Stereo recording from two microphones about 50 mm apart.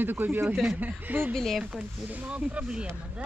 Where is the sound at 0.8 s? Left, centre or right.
Right.